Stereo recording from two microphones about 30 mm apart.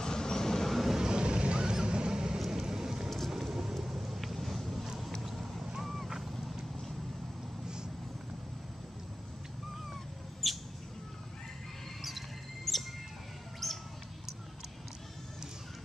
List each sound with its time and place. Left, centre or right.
0.0 s train: left
0.7 s vehicle: centre
0.9 s vehicle: right
2.3 s vehicle: centre
5.2 s clip-clop: centre
5.8 s vehicle: centre
10.4 s a sound: centre
12.0 s music: centre
13.6 s a sound: centre